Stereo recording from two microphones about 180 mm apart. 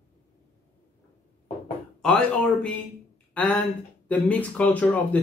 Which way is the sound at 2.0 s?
5° left (ahead or behind).